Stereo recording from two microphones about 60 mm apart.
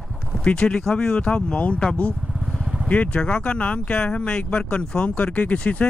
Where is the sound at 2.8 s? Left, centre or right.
Left.